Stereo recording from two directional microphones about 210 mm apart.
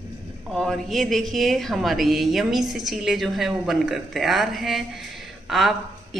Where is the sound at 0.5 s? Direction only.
Centre (ahead or behind).